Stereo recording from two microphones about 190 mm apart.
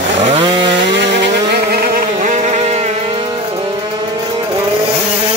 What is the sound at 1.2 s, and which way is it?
Music, 55° right (ahead or behind).